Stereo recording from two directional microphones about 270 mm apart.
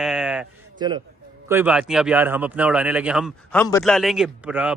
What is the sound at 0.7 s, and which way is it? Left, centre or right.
Speech, centre.